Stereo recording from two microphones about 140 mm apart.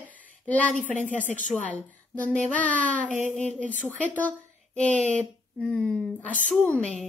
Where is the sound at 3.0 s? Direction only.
65° right (ahead or behind).